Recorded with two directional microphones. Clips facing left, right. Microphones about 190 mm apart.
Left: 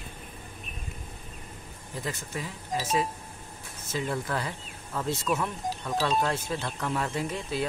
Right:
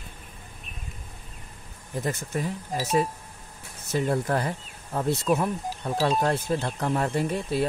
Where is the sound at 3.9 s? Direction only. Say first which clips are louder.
Right 6 dB; 45° right (ahead or behind).